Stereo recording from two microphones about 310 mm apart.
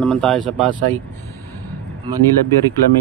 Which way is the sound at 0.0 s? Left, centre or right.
Centre.